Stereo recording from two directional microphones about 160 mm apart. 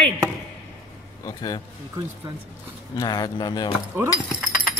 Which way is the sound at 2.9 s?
25° left (ahead or behind).